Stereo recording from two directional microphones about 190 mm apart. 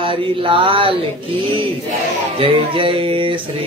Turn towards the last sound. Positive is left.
turn(degrees=-30)  # may be behind; listen again after turning